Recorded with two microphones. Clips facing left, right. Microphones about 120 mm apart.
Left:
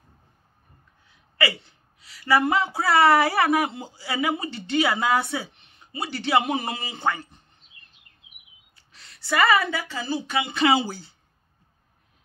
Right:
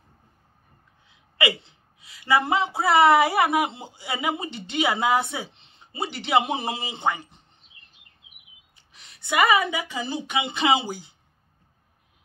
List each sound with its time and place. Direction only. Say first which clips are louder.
1.4 s a woman's voice: right 1 dB; 20° right (ahead or behind)
8.7 s a woman's voice: left 1 dB; 20° right (ahead or behind)